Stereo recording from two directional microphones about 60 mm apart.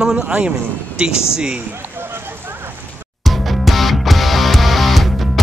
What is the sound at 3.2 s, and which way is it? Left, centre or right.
Music, centre.